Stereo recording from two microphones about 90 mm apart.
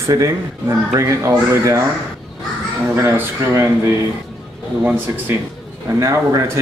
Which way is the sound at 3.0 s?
30° right (ahead or behind).